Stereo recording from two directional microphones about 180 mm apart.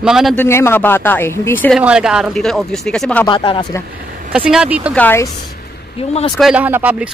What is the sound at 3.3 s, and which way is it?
Speech, 25° left (ahead or behind).